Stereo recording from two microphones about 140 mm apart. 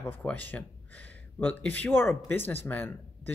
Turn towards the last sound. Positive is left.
turn(degrees=15)  # may be behind; listen again after turning